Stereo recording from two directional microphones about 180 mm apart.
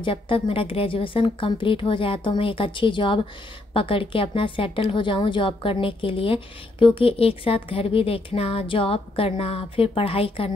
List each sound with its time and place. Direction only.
0.0 s a woman's voice: 30° left (ahead or behind)